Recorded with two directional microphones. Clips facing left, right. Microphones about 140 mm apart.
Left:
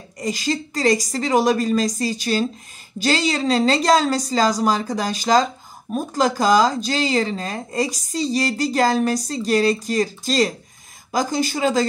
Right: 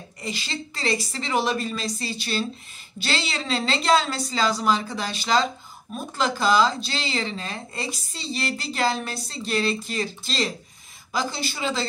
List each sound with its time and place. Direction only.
0.2 s a woman's voice: 40° left (ahead or behind)